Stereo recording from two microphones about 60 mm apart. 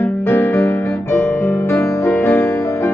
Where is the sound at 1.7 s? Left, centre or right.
Left.